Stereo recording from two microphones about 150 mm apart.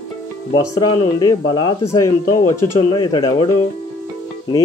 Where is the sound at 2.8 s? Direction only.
30° left (ahead or behind).